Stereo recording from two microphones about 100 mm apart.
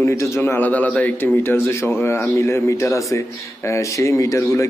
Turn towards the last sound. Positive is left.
turn(degrees=30)  # may be behind; listen again after turning